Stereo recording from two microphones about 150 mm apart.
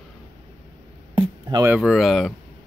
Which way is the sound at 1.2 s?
30° right (ahead or behind).